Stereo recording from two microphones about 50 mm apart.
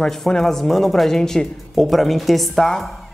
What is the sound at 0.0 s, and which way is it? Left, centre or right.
Speech, centre.